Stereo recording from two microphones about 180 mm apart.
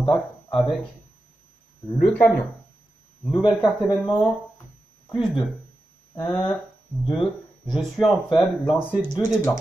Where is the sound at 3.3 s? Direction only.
25° left (ahead or behind).